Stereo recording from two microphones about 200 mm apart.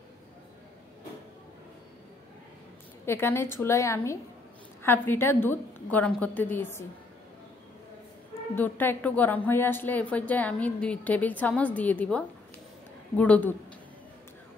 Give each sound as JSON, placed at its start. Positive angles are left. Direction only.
{"t": 3.1, "sound": "a woman's voice", "side_deg": 10}
{"t": 8.5, "sound": "a woman's voice", "side_deg": 10}